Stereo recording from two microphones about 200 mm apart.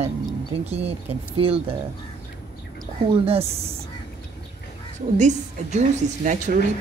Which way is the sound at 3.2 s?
30° right (ahead or behind).